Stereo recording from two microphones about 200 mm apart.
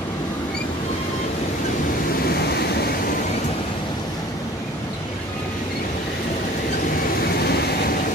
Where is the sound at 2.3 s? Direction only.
55° left (ahead or behind).